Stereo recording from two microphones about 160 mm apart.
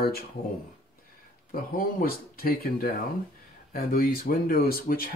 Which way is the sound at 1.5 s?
60° left (ahead or behind).